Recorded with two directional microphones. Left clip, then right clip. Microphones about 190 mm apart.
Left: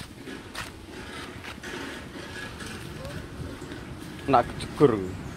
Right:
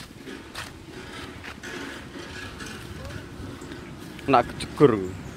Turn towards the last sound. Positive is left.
turn(degrees=-40)  # may be behind; listen again after turning